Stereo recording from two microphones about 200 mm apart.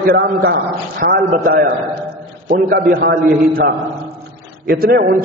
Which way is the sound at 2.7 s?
45° right (ahead or behind).